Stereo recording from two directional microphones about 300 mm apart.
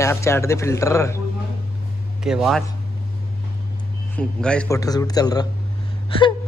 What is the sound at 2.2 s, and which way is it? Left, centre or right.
Speech, centre.